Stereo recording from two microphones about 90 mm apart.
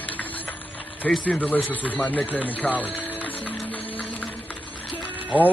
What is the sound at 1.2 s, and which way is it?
Speech, 15° left (ahead or behind).